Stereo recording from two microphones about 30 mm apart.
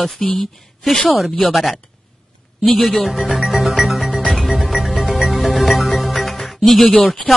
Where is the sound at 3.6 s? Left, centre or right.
Centre.